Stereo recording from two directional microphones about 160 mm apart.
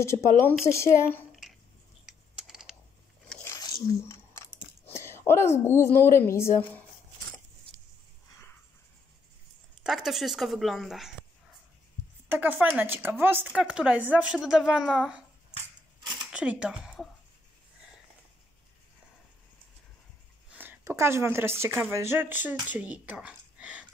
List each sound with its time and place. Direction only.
0.0 s speech: 15° left (ahead or behind)
2.4 s a sound: 5° right (ahead or behind)
3.4 s biting: 20° left (ahead or behind)
9.8 s speech: centre (ahead or behind)
12.3 s speech: 10° right (ahead or behind)
16.3 s speech: 5° right (ahead or behind)
20.4 s speech: 10° right (ahead or behind)